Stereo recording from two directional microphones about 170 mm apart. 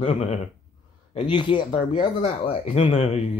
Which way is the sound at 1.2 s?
30° left (ahead or behind).